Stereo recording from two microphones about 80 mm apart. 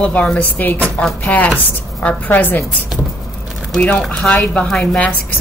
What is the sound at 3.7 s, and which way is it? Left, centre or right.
A woman's voice, centre.